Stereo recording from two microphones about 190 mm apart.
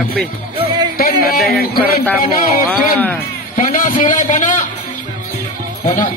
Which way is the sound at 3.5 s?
45° left (ahead or behind).